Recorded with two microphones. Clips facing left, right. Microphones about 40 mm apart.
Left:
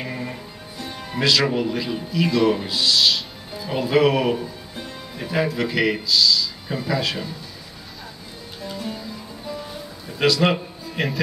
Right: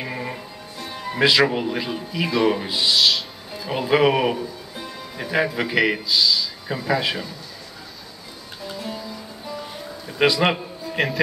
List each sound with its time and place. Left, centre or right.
0.0 s music: centre
0.7 s music: centre
1.1 s speech: centre
3.0 s music: centre
3.7 s speech: centre
8.6 s music: centre
10.1 s a man's voice: centre
10.5 s a sound: centre